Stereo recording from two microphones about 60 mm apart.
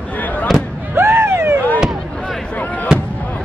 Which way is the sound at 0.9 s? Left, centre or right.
Right.